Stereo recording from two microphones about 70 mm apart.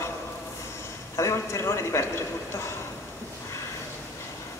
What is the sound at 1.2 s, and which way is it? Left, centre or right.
Speech, left.